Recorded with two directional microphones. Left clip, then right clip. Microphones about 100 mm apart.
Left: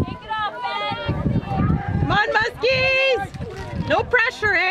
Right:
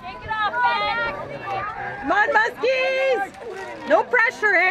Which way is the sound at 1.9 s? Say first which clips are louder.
Right 1 dB; 25° left (ahead or behind).